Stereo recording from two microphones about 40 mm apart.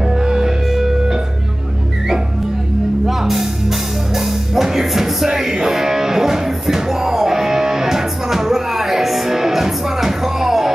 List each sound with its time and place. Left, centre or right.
0.1 s music: centre
3.1 s music: centre